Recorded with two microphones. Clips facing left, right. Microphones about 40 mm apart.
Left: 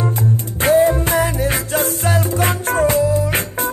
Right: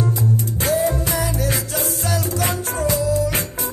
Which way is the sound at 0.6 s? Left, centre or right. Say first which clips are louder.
Left 9 dB; left.